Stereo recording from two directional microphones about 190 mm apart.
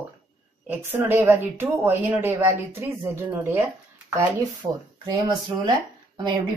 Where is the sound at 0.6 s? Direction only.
10° right (ahead or behind).